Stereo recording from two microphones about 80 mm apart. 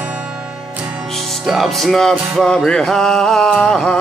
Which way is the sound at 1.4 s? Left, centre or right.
Centre.